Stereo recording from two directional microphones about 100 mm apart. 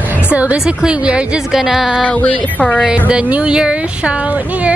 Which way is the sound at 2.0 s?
10° left (ahead or behind).